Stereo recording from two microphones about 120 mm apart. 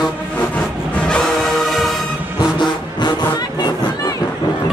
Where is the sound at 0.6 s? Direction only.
5° left (ahead or behind).